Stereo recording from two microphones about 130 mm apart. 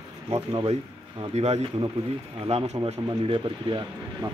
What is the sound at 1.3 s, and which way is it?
Speech, 55° right (ahead or behind).